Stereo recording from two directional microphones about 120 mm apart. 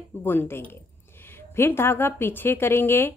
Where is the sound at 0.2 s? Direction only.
20° left (ahead or behind).